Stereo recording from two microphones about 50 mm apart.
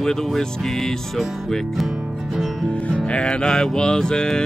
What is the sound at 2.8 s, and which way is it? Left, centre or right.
Music, left.